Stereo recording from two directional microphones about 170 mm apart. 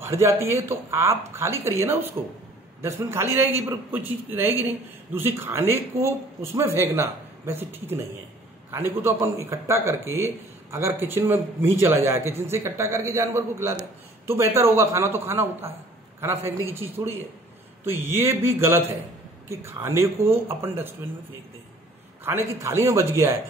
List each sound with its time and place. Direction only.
0.0 s a man's voice: 15° right (ahead or behind)
22.2 s a man's voice: 15° right (ahead or behind)